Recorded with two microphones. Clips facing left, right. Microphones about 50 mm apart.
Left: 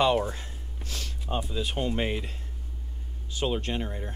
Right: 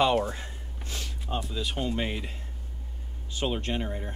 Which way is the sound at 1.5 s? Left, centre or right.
Centre.